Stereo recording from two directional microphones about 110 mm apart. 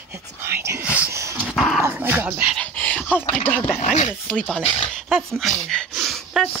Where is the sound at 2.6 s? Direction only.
15° left (ahead or behind).